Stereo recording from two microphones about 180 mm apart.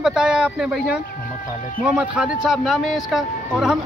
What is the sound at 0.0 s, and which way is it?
Speech, 5° right (ahead or behind).